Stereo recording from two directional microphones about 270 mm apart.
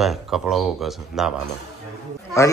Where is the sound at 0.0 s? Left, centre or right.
Centre.